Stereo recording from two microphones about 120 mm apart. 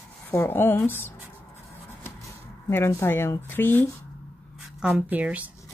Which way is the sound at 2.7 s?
20° left (ahead or behind).